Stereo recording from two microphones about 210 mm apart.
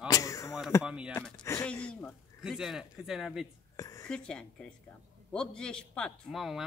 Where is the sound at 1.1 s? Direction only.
5° left (ahead or behind).